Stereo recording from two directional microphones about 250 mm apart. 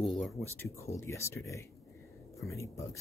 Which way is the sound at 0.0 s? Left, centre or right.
Centre.